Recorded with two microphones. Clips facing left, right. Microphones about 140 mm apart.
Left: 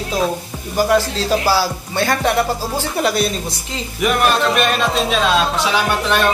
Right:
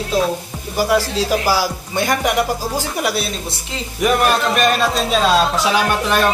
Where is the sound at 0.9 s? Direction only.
10° right (ahead or behind).